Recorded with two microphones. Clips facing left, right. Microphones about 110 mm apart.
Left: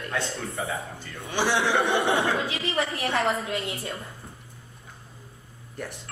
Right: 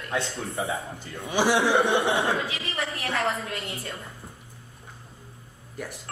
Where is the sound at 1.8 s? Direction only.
25° right (ahead or behind).